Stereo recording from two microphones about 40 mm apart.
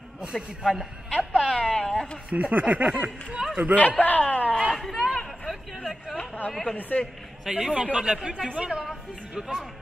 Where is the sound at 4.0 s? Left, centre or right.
Left.